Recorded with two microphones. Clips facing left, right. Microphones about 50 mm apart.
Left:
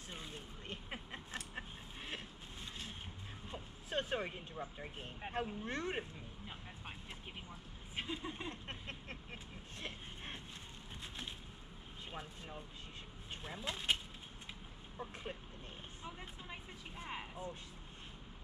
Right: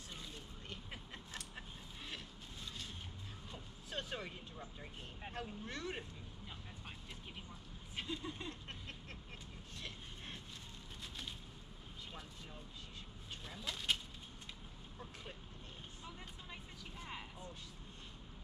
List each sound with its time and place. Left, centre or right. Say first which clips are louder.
0.1 s a sound: left 3 dB; left
3.4 s vehicle: left 6 dB; left
12.1 s speech: left 7 dB; left
15.0 s vehicle: left 7 dB; left
16.0 s speech: left 4 dB; left